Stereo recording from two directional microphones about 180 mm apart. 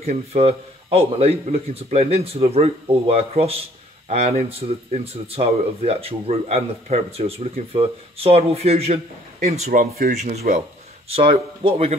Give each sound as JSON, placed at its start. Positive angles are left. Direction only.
{"t": 0.0, "sound": "speech", "side_deg": -35}
{"t": 9.7, "sound": "speech", "side_deg": -55}
{"t": 11.1, "sound": "speech", "side_deg": -30}